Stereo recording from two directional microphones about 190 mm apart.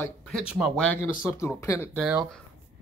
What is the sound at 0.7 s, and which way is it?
Speech, 5° left (ahead or behind).